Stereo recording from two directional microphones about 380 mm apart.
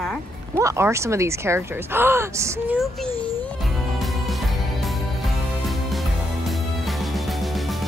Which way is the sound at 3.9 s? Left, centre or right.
Centre.